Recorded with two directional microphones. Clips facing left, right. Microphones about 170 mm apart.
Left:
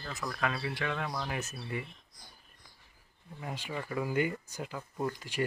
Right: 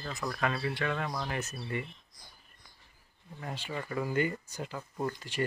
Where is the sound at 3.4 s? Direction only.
10° left (ahead or behind).